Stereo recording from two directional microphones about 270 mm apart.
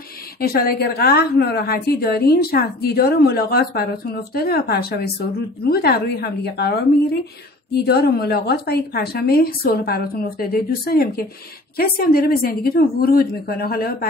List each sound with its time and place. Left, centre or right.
0.4 s a woman's voice: left